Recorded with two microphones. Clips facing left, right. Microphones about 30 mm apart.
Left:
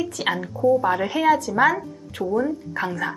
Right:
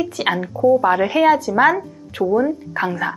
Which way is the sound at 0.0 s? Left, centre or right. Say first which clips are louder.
Right 4 dB; centre.